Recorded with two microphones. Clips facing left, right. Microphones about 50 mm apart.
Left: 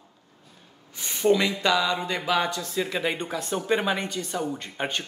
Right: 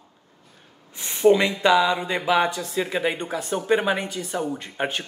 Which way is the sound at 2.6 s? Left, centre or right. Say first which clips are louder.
Right 3 dB; centre.